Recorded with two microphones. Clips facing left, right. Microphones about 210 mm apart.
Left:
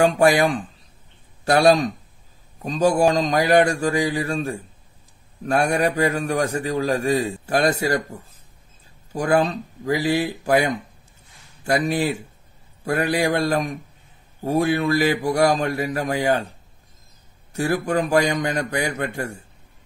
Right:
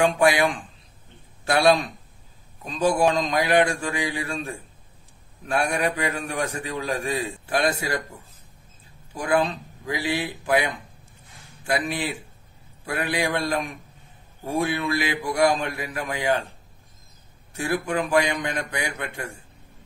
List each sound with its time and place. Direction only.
0.0 s a man's voice: 40° left (ahead or behind)
9.1 s a man's voice: 40° left (ahead or behind)
17.5 s a man's voice: 40° left (ahead or behind)